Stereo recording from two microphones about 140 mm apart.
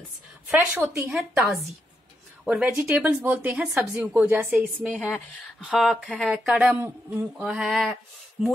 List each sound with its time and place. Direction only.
0.9 s a woman's voice: 5° right (ahead or behind)
4.9 s a woman's voice: 10° left (ahead or behind); by 7.2 s 15° right (ahead or behind)
7.3 s speech: 5° right (ahead or behind)